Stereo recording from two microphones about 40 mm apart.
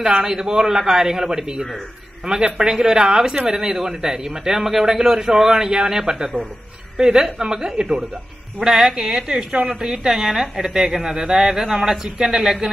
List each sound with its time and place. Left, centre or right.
0.0 s speech: centre
8.5 s speech: centre